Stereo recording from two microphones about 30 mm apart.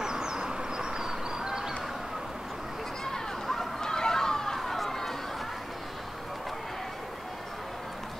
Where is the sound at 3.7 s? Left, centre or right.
Left.